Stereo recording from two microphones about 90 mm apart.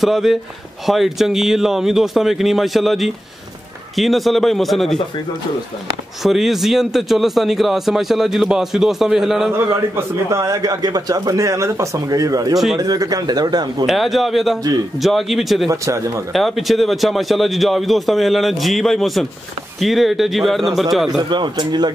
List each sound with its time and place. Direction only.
0.0 s a man's voice: 5° right (ahead or behind)
6.2 s a man's voice: 5° right (ahead or behind)
9.9 s a man's voice: 40° right (ahead or behind)
13.8 s a man's voice: centre (ahead or behind)
15.7 s a man's voice: 35° right (ahead or behind)
16.3 s a man's voice: centre (ahead or behind)
21.3 s speech: 55° right (ahead or behind)